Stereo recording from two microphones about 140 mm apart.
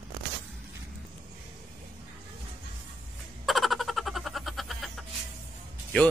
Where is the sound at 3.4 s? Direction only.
Centre (ahead or behind).